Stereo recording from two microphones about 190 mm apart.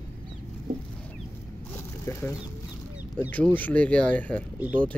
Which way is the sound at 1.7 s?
15° left (ahead or behind).